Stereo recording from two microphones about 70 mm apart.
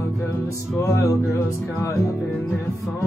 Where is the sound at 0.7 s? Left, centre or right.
Left.